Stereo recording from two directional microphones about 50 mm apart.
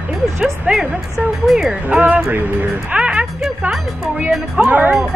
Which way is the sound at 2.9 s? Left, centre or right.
Right.